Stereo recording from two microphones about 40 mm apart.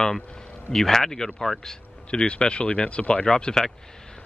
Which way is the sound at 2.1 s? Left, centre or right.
Left.